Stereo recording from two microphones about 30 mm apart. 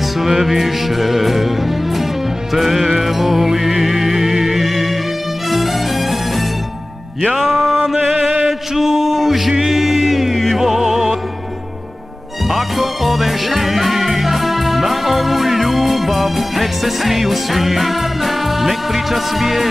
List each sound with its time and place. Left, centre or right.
0.2 s music: centre
7.3 s music: centre
12.4 s music: centre